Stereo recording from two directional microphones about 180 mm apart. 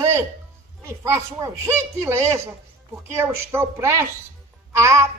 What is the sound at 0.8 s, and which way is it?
Speech, 15° right (ahead or behind).